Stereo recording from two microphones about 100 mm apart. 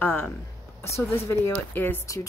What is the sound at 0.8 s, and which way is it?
A woman's voice, 25° left (ahead or behind).